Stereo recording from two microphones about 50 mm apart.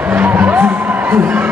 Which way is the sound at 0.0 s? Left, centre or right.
Right.